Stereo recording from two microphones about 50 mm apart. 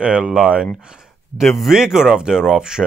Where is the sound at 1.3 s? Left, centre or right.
Centre.